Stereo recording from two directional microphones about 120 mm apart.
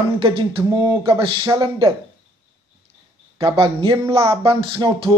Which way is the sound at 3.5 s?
50° right (ahead or behind).